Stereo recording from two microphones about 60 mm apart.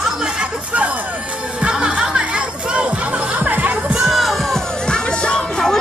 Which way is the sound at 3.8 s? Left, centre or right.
Centre.